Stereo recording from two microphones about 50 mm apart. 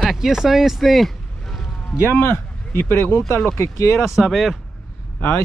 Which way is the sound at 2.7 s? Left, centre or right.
Left.